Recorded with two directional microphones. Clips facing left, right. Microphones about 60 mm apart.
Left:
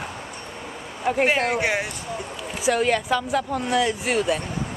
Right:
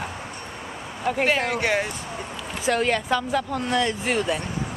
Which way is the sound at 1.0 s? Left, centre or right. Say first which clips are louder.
Left 2 dB; centre.